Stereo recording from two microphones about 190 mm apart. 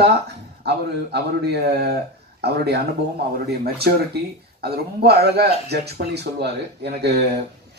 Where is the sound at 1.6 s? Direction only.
60° right (ahead or behind).